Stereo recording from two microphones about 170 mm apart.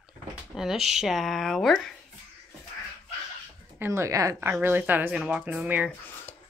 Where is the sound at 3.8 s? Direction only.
15° right (ahead or behind).